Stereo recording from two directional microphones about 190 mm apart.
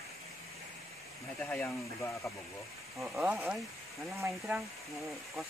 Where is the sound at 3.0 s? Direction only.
5° right (ahead or behind).